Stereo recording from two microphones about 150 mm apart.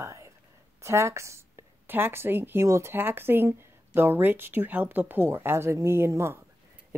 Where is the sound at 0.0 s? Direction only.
20° right (ahead or behind).